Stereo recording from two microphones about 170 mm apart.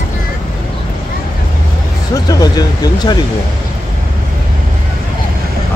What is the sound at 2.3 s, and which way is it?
Speech, 25° left (ahead or behind).